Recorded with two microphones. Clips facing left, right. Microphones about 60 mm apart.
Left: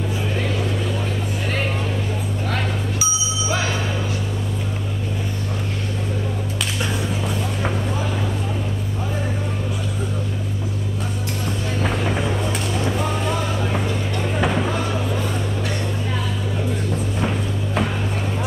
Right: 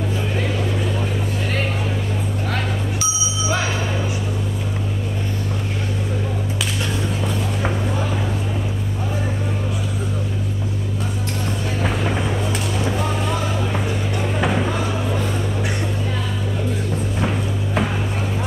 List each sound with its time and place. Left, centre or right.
2.5 s bicycle bell: centre
11.8 s a sound: centre
17.2 s music: centre